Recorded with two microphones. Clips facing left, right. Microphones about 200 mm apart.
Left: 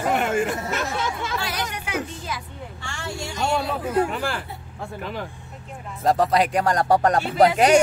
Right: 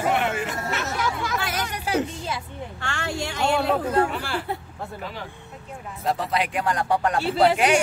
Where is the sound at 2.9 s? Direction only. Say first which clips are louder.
Right 3 dB; 60° right (ahead or behind).